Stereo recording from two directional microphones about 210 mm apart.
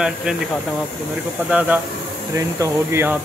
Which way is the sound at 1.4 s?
5° right (ahead or behind).